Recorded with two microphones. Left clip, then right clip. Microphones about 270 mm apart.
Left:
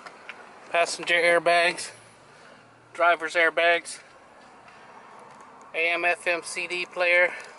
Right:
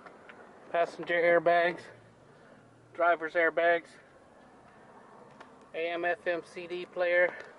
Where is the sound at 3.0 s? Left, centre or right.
Centre.